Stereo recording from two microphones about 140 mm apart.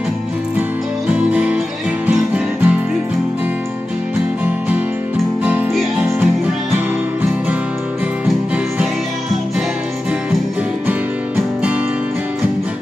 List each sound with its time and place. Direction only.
0.6 s music: 10° right (ahead or behind)